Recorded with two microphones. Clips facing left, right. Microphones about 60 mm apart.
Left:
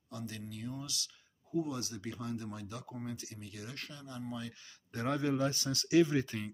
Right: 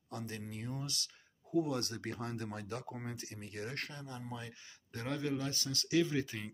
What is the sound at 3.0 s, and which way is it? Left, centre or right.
Speech, right.